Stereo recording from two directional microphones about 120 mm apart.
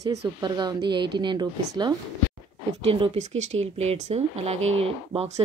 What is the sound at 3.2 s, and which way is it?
Speech, 75° right (ahead or behind).